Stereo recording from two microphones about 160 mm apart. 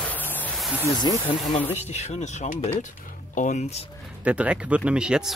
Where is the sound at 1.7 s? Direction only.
45° left (ahead or behind).